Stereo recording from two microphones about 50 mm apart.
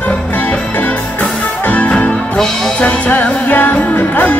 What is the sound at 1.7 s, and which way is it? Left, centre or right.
Music, left.